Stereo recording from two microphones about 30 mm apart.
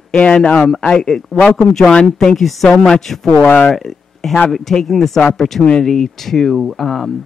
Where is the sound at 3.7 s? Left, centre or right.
Centre.